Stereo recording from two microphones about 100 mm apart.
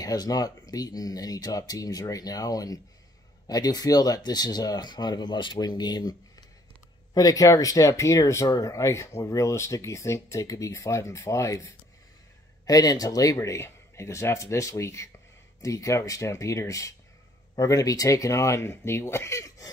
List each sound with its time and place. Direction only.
0.0 s speech: 40° left (ahead or behind)